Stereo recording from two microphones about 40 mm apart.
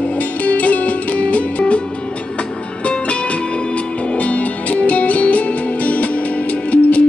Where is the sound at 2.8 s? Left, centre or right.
Left.